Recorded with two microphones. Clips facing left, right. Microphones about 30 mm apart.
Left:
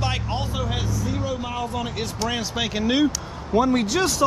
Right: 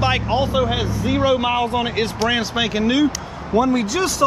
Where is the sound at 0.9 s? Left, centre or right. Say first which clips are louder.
Right 9 dB; right.